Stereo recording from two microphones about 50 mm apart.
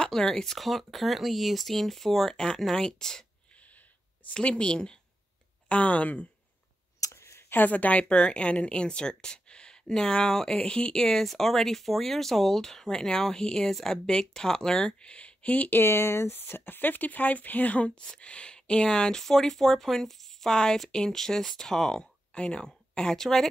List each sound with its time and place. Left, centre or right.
0.0 s speech: centre
4.3 s a woman's voice: left
5.7 s speech: left
7.1 s a sound: left
7.5 s speech: left
8.0 s speech: left
15.7 s speech: left; by 22.0 s centre
22.0 s a sound: centre
22.9 s speech: centre